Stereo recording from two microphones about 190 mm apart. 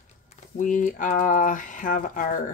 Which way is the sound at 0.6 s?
45° left (ahead or behind).